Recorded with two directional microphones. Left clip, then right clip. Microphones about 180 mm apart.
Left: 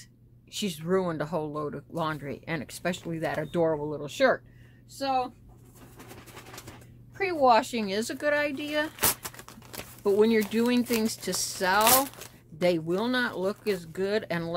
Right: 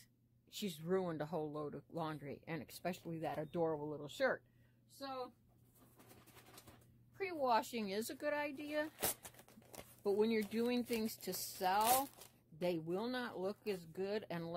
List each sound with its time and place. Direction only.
0.5 s speech: 35° right (ahead or behind)
7.2 s speech: 40° right (ahead or behind)
10.0 s speech: 35° right (ahead or behind)